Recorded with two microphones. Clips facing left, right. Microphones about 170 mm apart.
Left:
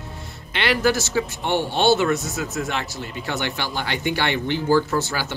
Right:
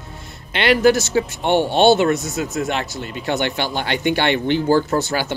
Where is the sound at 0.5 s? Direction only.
20° right (ahead or behind).